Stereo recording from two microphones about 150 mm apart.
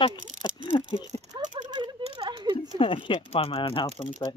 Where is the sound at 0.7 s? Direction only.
30° left (ahead or behind).